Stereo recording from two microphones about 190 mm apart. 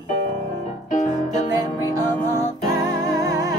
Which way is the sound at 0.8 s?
40° left (ahead or behind).